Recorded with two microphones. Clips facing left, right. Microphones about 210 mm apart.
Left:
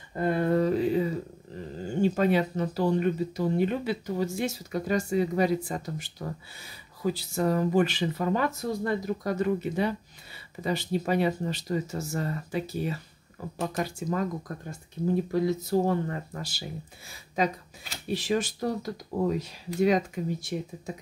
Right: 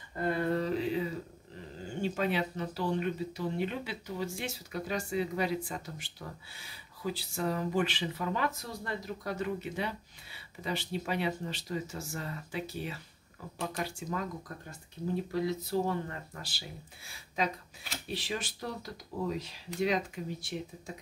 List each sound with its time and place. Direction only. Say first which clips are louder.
0.2 s a sound: left 6 dB; 50° left (ahead or behind)
2.0 s speech: left 8 dB; 45° left (ahead or behind)
15.4 s speech: left 6 dB; 45° left (ahead or behind)
18.1 s speech: left 10 dB; 45° left (ahead or behind)